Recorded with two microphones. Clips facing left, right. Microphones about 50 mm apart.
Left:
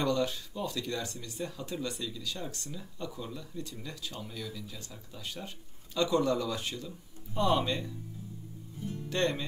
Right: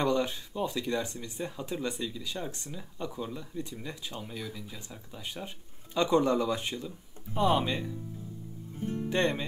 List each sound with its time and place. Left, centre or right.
0.0 s speech: right
8.7 s music: right
9.1 s speech: right